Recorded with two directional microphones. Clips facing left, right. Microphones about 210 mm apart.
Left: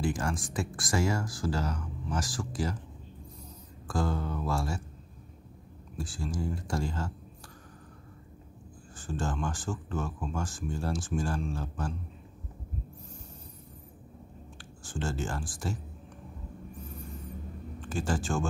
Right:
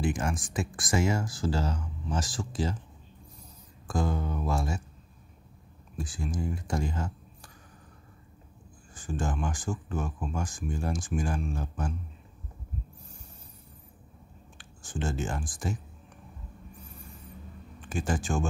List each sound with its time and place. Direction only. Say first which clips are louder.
0.0 s speech: right 1 dB; 20° right (ahead or behind)
3.8 s speech: right 1 dB; 20° right (ahead or behind)
5.9 s speech: right 1 dB; 15° right (ahead or behind)
8.9 s speech: right 1 dB; 15° right (ahead or behind)
14.6 s speech: right 1 dB; 20° right (ahead or behind)
17.8 s speech: right 1 dB; 15° right (ahead or behind)